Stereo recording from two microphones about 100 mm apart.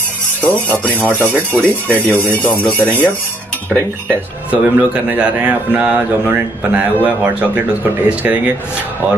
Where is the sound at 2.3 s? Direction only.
15° left (ahead or behind).